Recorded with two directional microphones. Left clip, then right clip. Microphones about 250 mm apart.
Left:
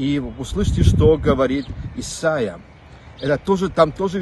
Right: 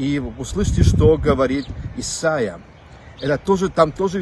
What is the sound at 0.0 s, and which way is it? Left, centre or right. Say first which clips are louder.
A man's voice: even; centre.